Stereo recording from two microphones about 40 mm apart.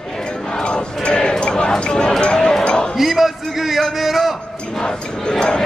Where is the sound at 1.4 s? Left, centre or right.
Left.